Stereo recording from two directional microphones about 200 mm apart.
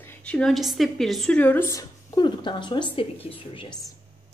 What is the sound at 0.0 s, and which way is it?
A woman's voice, 10° left (ahead or behind).